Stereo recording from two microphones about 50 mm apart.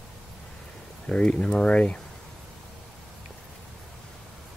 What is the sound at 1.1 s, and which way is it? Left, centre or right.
Speech, centre.